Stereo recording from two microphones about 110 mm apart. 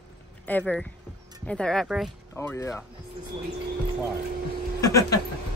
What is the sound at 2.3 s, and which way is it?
Speech, 25° left (ahead or behind).